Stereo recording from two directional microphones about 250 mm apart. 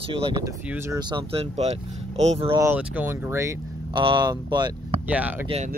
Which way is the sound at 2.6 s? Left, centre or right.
Centre.